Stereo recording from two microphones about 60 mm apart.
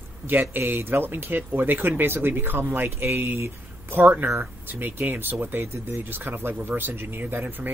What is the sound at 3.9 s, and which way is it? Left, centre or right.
Speech, right.